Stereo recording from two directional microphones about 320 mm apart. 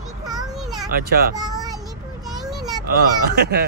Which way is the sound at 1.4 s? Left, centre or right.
Centre.